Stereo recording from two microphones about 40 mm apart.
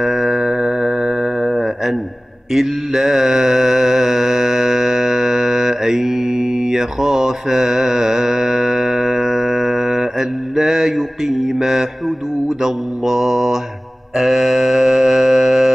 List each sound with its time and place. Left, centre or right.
0.0 s music: centre
1.4 s music: centre
2.5 s mantra: centre
14.1 s a sound: centre